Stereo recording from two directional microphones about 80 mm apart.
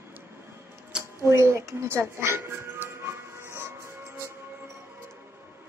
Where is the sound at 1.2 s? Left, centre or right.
Right.